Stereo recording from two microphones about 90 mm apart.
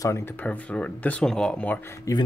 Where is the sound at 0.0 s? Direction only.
35° left (ahead or behind).